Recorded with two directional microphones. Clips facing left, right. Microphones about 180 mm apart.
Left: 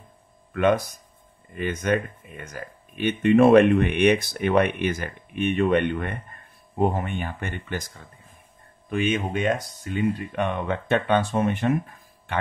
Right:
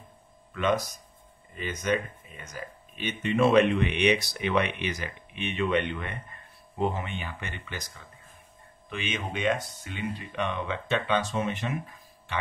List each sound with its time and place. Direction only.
0.5 s speech: 55° left (ahead or behind)